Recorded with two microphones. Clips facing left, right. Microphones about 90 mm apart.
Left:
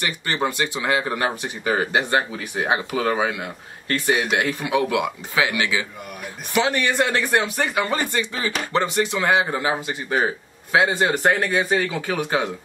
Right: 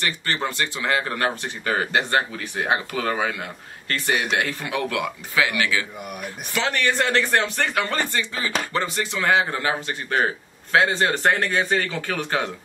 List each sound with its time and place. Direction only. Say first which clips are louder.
0.0 s a man's voice: left 2 dB; 15° left (ahead or behind)